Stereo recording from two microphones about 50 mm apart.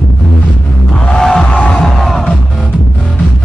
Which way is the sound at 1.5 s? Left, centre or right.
Left.